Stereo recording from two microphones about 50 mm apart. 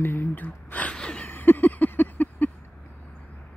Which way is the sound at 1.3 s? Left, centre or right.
Left.